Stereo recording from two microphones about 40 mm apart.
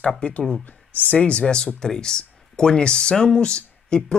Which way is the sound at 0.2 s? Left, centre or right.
Left.